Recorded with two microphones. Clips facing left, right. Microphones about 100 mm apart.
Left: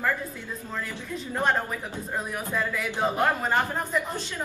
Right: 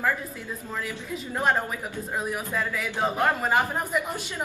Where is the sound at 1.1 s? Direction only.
5° right (ahead or behind).